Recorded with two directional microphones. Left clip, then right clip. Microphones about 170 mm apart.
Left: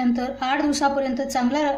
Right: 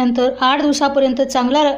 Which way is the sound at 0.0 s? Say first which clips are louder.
Right 9 dB; 30° right (ahead or behind).